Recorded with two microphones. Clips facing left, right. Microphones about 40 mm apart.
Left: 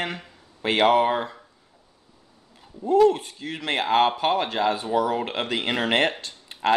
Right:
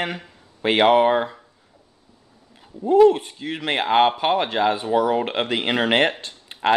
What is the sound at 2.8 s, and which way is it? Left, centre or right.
Speech, centre.